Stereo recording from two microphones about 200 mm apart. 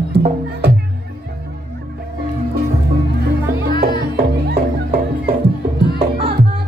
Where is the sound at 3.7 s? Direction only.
25° left (ahead or behind).